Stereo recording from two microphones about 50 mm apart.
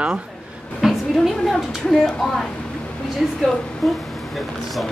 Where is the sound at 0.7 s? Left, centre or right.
Centre.